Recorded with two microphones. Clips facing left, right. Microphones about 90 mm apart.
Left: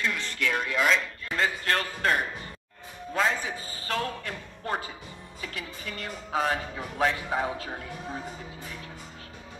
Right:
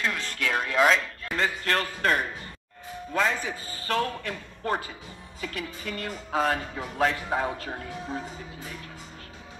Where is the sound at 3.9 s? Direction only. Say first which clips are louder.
Right 3 dB; 40° right (ahead or behind).